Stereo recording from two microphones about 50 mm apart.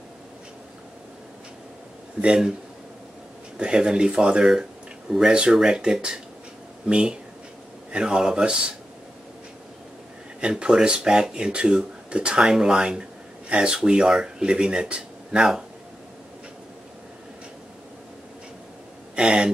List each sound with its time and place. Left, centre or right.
2.2 s speech: centre
3.5 s speech: centre
10.4 s speech: centre
19.1 s a sound: centre